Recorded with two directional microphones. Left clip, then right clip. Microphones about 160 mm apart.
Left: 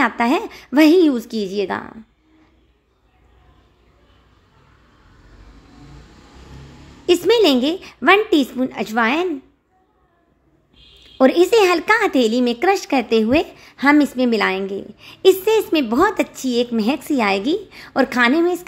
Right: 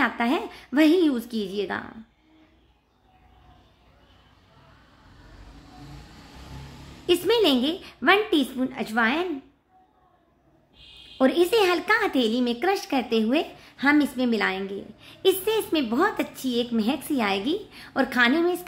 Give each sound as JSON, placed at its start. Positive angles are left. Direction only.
{"t": 0.0, "sound": "a child's voice", "side_deg": 30}
{"t": 7.1, "sound": "a child's voice", "side_deg": 30}
{"t": 11.1, "sound": "a child's voice", "side_deg": 30}